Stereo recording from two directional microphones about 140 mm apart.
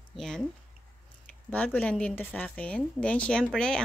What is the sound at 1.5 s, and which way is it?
A woman's voice, 10° left (ahead or behind).